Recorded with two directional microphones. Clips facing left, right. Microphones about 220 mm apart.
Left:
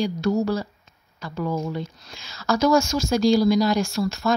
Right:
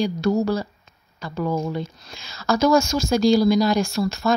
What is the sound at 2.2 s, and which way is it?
A woman's voice, 25° right (ahead or behind).